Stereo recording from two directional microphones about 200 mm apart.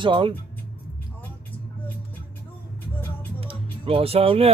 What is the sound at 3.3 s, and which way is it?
Music, 30° right (ahead or behind).